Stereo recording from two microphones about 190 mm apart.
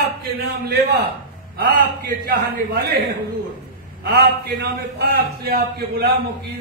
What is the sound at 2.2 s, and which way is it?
Speech, 50° right (ahead or behind).